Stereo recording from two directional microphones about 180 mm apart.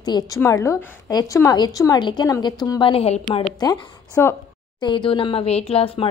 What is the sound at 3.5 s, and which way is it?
Speech, 20° left (ahead or behind).